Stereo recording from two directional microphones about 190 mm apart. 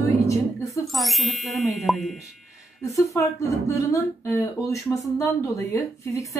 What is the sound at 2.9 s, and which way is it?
Speech, 15° left (ahead or behind).